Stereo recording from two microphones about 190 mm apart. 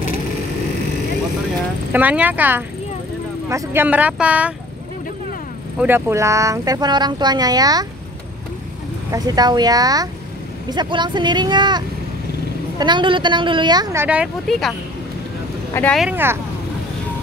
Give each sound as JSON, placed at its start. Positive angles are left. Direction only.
{"t": 1.9, "sound": "speech", "side_deg": -10}
{"t": 5.8, "sound": "speech", "side_deg": -10}
{"t": 9.1, "sound": "speech", "side_deg": -20}
{"t": 14.0, "sound": "speech", "side_deg": -5}
{"t": 15.7, "sound": "speech", "side_deg": 5}
{"t": 16.1, "sound": "speech", "side_deg": -10}